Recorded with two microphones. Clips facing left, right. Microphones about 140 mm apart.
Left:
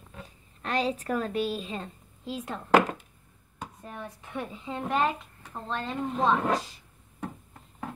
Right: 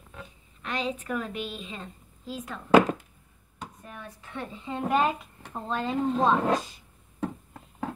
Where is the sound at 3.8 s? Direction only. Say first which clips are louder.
Left 3 dB; 25° left (ahead or behind).